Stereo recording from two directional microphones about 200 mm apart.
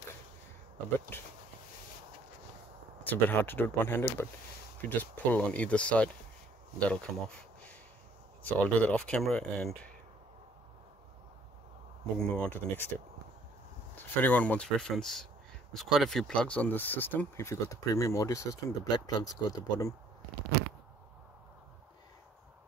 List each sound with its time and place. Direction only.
1.1 s speech: 10° left (ahead or behind)
3.0 s speech: 10° left (ahead or behind)
8.7 s speech: 5° left (ahead or behind)
12.2 s speech: 5° left (ahead or behind)